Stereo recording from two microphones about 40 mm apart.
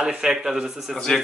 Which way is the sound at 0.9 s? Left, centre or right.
Centre.